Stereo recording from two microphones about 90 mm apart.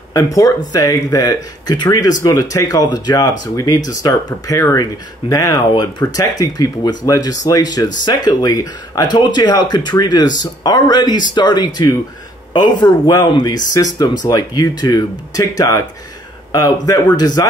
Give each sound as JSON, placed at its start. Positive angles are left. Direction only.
{"t": 0.1, "sound": "speech", "side_deg": 40}